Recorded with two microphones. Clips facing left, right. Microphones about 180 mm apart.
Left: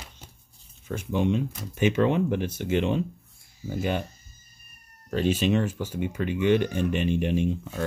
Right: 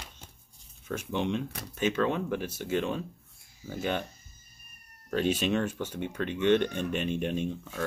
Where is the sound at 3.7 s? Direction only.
10° left (ahead or behind).